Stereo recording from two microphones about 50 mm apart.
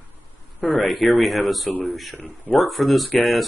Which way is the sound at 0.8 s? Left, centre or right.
Centre.